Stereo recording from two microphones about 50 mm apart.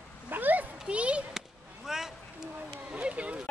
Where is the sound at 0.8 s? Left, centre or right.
Right.